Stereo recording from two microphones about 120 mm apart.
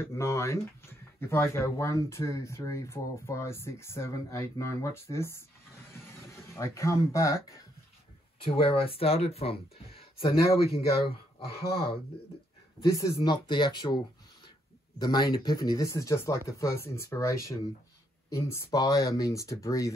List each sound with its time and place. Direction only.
0.0 s speech: 25° left (ahead or behind)
5.9 s vehicle: 20° left (ahead or behind)
6.3 s speech: 20° left (ahead or behind)
8.4 s speech: 50° left (ahead or behind)
12.8 s speech: 30° left (ahead or behind)